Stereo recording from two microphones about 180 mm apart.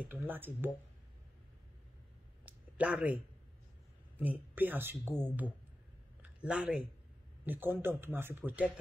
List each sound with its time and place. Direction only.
0.0 s speech: 10° right (ahead or behind)
2.4 s a sound: 5° right (ahead or behind)
4.2 s speech: 10° right (ahead or behind)
6.4 s speech: 5° right (ahead or behind)